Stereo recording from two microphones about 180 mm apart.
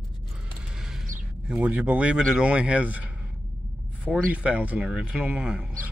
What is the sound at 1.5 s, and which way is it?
Speech, 5° right (ahead or behind).